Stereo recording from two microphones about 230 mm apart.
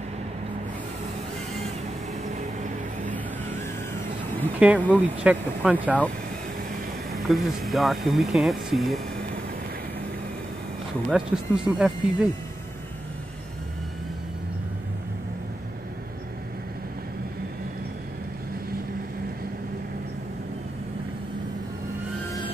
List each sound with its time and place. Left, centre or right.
2.3 s vehicle: right
4.6 s speech: centre
7.2 s speech: centre
11.1 s speech: centre